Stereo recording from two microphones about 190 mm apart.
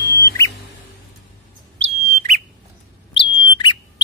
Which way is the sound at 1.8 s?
40° right (ahead or behind).